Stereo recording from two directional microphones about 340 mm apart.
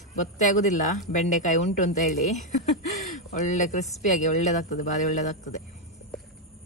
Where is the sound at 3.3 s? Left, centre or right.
Left.